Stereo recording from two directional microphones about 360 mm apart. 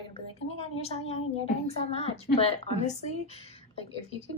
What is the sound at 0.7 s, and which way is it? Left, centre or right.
A woman's voice, centre.